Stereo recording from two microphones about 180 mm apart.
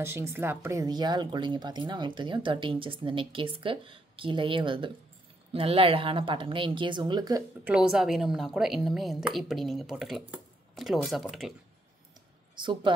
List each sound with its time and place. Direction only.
0.0 s speech: 10° right (ahead or behind)
7.6 s a woman's voice: 5° right (ahead or behind)
12.5 s speech: 25° right (ahead or behind)